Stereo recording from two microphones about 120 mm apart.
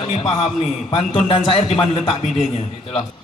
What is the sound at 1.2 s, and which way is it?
A man's voice, 50° left (ahead or behind).